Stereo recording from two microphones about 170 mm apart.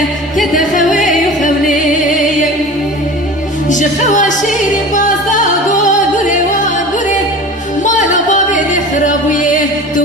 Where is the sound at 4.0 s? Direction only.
45° left (ahead or behind).